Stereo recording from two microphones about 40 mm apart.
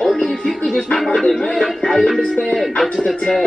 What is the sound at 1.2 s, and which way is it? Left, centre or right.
Speech, centre.